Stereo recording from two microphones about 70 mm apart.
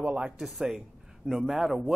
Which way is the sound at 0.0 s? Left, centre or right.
Centre.